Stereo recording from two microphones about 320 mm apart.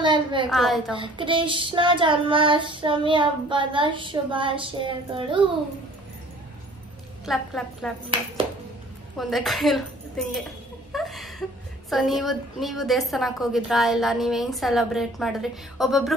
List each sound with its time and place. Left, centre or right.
0.0 s a woman's voice: centre
0.5 s a woman's voice: centre
0.9 s child singing: centre
7.2 s a woman's voice: centre
9.2 s a woman's voice: centre
10.9 s a sound: centre
11.9 s a woman's voice: centre